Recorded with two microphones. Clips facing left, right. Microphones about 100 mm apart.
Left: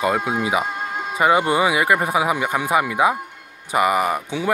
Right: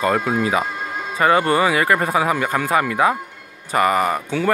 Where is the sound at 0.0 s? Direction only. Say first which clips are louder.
Right 2 dB; 10° left (ahead or behind).